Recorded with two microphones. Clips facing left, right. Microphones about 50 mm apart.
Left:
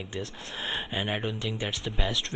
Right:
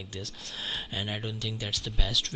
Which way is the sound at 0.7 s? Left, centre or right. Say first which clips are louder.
Left 4 dB; centre.